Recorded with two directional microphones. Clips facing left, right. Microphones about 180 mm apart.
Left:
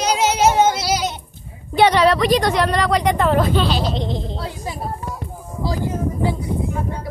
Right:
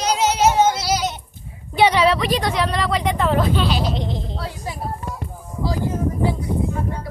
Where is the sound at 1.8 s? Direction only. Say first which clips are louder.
Left 2 dB; 5° right (ahead or behind).